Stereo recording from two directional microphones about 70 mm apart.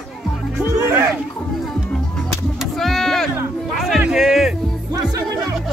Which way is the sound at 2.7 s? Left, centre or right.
Centre.